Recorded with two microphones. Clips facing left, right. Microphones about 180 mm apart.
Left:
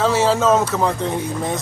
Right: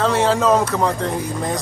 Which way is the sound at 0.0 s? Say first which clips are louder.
Even; 5° left (ahead or behind).